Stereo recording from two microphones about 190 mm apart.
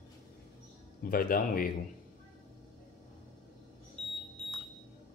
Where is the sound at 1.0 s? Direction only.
50° left (ahead or behind).